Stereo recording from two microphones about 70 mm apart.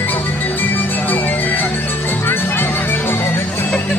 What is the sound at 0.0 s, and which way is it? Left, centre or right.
Music, left.